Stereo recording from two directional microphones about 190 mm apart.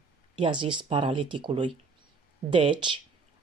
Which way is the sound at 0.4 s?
25° right (ahead or behind).